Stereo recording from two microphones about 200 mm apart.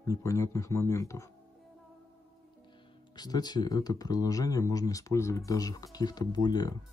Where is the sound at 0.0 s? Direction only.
15° left (ahead or behind).